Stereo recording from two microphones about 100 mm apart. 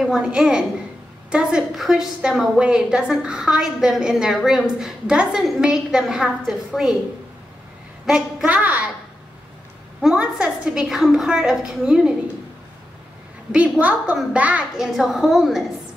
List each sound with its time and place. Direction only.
0.0 s a woman's voice: 5° right (ahead or behind)
8.5 s a woman's voice: 15° right (ahead or behind)
10.0 s a woman's voice: 5° right (ahead or behind)
13.5 s a woman's voice: 15° right (ahead or behind)